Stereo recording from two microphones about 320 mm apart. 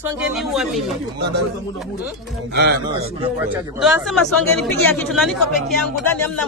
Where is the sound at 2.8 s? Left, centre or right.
Centre.